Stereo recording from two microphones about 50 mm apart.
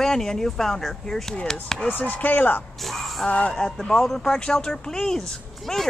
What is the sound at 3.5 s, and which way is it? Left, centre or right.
Speech, centre.